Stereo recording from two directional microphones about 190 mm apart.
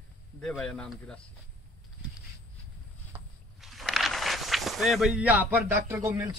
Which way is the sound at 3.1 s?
Centre (ahead or behind).